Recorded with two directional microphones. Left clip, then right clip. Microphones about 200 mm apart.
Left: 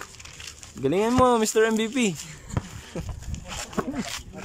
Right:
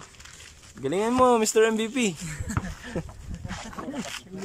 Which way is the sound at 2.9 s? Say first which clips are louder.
Right 2 dB; centre (ahead or behind).